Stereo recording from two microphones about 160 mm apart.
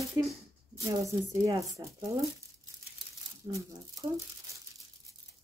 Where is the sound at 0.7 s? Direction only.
20° right (ahead or behind).